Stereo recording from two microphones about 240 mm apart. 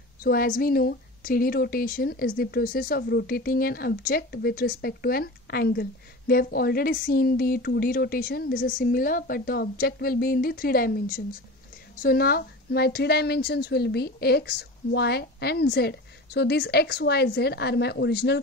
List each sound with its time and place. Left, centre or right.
0.2 s a woman's voice: left